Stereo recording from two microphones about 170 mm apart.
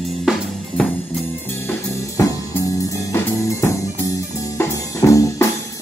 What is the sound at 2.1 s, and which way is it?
Music, 20° left (ahead or behind).